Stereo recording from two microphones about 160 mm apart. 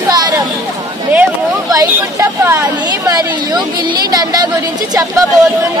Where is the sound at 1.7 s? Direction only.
15° right (ahead or behind).